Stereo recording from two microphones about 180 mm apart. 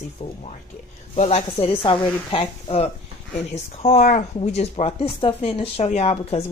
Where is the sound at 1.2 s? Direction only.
35° left (ahead or behind).